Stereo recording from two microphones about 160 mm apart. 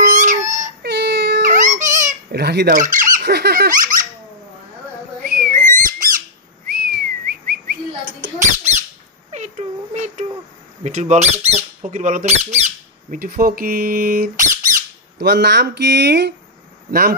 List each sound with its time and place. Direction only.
0.0 s crying: 50° right (ahead or behind)
0.8 s baby cry: 90° right
1.4 s baby cry: 50° right (ahead or behind)
2.3 s speech: 90° right
2.7 s speech: 55° right (ahead or behind)
5.2 s a sound: 65° right (ahead or behind)
6.7 s bird: 70° right (ahead or behind); by 8.8 s 50° right (ahead or behind)
9.3 s a sound: 45° right (ahead or behind)
10.8 s speech: 50° right (ahead or behind)
13.2 s speech: 65° right (ahead or behind)
15.1 s speech: 90° right